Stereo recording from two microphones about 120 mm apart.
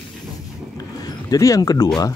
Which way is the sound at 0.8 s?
30° left (ahead or behind).